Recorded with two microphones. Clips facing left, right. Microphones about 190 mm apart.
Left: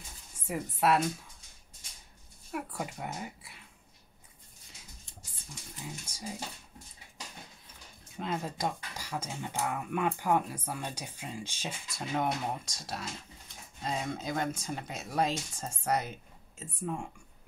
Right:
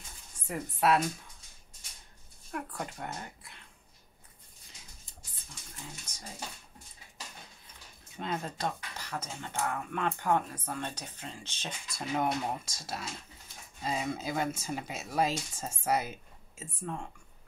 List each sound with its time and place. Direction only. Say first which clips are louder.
0.5 s speech: even; centre (ahead or behind)
2.5 s speech: left 1 dB; 5° left (ahead or behind)
5.9 s speech: left 7 dB; 10° left (ahead or behind)
8.2 s speech: left 1 dB; 5° left (ahead or behind)
16.8 s speech: left 3 dB; 10° left (ahead or behind)